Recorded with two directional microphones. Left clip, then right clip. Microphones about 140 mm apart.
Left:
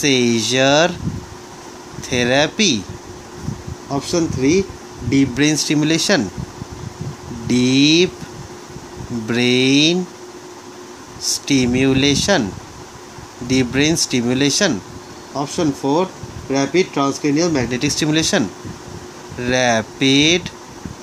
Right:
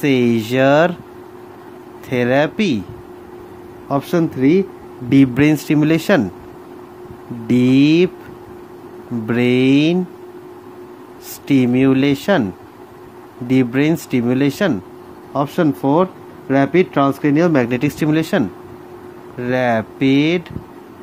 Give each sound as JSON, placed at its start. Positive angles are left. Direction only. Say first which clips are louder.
{"t": 0.0, "sound": "speech", "louder": "even", "side_deg": -10}
{"t": 2.0, "sound": "speech", "louder": "even", "side_deg": -5}
{"t": 3.9, "sound": "speech", "louder": "right 2 dB", "side_deg": -40}
{"t": 5.3, "sound": "speech", "louder": "right 2 dB", "side_deg": -15}
{"t": 7.4, "sound": "speech", "louder": "right 1 dB", "side_deg": -10}
{"t": 9.3, "sound": "speech", "louder": "even", "side_deg": -5}
{"t": 11.4, "sound": "speech", "louder": "right 3 dB", "side_deg": -5}
{"t": 13.5, "sound": "speech", "louder": "right 1 dB", "side_deg": -5}
{"t": 15.3, "sound": "speech", "louder": "right 3 dB", "side_deg": -40}
{"t": 17.6, "sound": "speech", "louder": "right 1 dB", "side_deg": -15}